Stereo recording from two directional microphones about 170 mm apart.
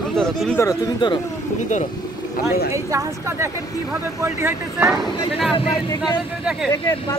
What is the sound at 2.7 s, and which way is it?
Speech, 20° right (ahead or behind).